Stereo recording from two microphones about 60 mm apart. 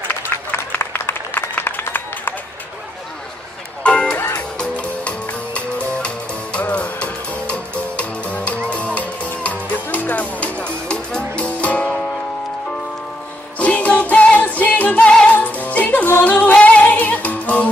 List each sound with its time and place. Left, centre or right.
0.3 s a sound: left
3.8 s music: centre
13.6 s music: left
15.0 s music: centre
15.2 s music: left